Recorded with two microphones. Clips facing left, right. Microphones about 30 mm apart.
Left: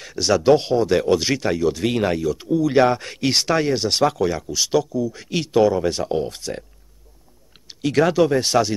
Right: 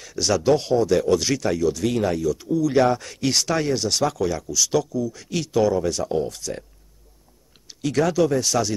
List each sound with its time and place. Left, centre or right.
0.2 s speech: left
7.6 s speech: left